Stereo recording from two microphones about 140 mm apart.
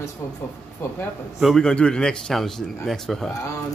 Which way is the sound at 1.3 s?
Centre (ahead or behind).